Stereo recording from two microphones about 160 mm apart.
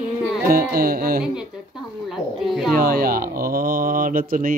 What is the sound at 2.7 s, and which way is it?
Speech, 65° right (ahead or behind).